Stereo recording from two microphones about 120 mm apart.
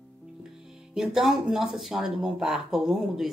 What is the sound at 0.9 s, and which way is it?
Speech, 5° right (ahead or behind).